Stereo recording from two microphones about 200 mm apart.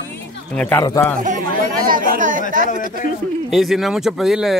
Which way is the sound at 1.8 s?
45° right (ahead or behind).